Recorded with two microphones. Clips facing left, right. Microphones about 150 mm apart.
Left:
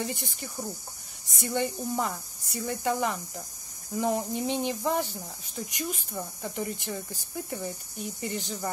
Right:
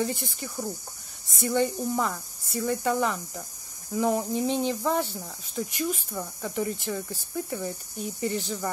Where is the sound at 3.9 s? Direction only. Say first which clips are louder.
Right 3 dB; 15° left (ahead or behind).